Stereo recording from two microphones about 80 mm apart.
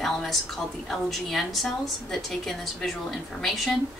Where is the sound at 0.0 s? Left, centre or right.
Centre.